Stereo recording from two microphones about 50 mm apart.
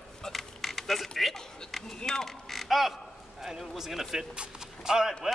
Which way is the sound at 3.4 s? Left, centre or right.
Centre.